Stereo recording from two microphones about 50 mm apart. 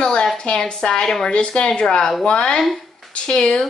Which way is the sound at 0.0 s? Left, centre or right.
Centre.